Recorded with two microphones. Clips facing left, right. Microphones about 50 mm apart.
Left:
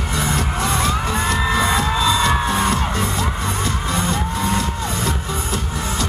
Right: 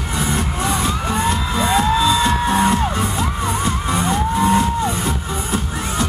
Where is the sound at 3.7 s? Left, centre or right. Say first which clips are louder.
Right 2 dB; centre.